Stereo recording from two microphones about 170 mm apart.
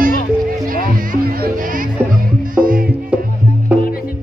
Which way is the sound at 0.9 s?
60° right (ahead or behind).